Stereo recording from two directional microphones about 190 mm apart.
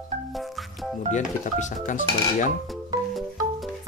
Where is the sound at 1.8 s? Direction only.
45° left (ahead or behind).